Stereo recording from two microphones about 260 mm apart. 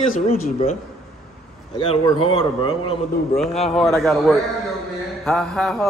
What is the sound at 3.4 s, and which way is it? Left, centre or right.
Speech, centre.